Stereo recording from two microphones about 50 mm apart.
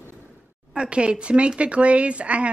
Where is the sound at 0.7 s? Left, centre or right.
Centre.